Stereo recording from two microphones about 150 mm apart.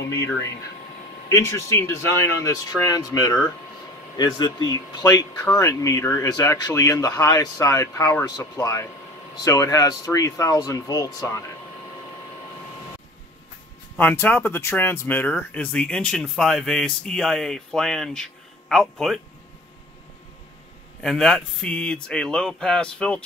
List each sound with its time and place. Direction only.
0.1 s speech: 20° left (ahead or behind)
13.9 s speech: 15° left (ahead or behind)
21.0 s speech: 5° left (ahead or behind)